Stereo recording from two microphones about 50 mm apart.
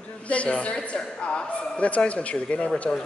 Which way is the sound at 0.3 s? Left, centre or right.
Left.